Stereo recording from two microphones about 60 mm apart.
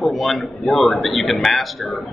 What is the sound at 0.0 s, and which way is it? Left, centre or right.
A man's voice, centre.